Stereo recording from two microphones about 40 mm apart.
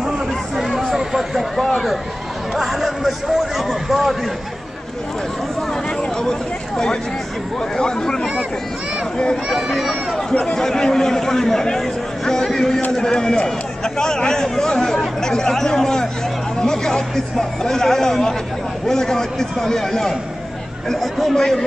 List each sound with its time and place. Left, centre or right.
0.6 s a sound: centre
2.5 s a man's voice: centre
7.7 s speech: centre
9.7 s speech: centre